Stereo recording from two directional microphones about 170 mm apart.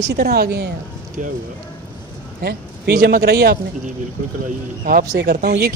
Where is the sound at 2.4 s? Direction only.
70° right (ahead or behind).